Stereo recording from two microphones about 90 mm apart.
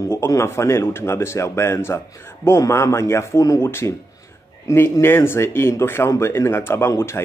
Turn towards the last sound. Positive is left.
turn(degrees=30)  # may be behind; listen again after turning